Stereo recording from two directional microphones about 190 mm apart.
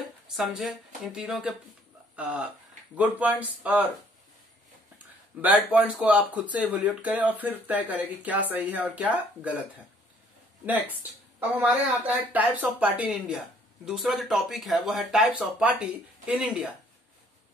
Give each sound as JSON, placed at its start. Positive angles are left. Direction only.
{"t": 0.4, "sound": "speech", "side_deg": 0}
{"t": 4.9, "sound": "speech", "side_deg": -5}